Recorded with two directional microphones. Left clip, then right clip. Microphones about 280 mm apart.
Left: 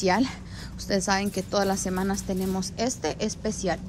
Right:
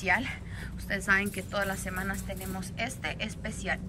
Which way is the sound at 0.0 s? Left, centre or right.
Centre.